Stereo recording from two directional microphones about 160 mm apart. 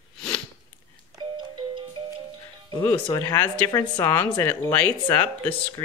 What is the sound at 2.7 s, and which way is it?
Speech, 25° left (ahead or behind).